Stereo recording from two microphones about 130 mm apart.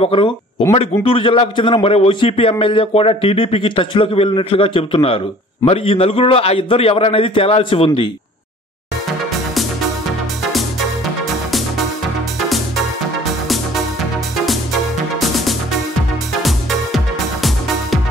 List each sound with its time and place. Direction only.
0.0 s a man's voice: 40° left (ahead or behind)
12.4 s music: centre (ahead or behind)